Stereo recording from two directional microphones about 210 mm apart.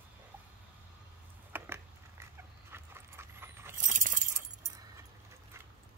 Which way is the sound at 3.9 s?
40° right (ahead or behind).